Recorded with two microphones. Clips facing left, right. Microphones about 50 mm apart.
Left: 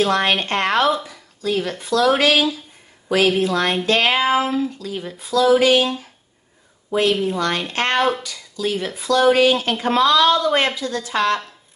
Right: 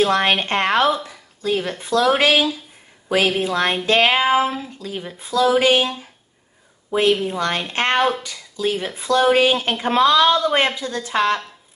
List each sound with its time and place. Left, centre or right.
0.0 s speech: centre